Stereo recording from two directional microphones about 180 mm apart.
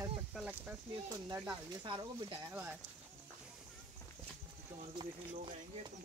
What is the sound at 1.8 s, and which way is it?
Speech, 25° right (ahead or behind).